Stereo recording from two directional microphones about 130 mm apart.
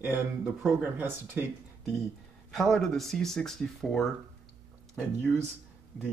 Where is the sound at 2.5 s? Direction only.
Centre (ahead or behind).